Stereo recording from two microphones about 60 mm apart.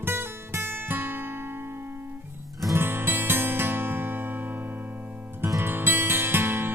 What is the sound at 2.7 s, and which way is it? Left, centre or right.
Music, right.